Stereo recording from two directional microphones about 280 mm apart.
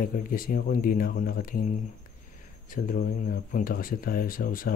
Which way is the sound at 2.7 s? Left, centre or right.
Left.